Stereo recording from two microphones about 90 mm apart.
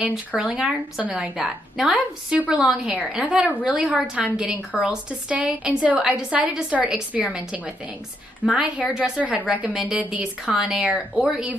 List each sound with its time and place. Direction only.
0.0 s a woman's voice: 10° right (ahead or behind)
1.3 s a woman's voice: 5° right (ahead or behind)
8.5 s a woman's voice: 10° right (ahead or behind)